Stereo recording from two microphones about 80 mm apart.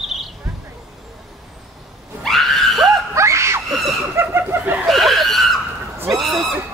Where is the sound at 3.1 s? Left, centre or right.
Right.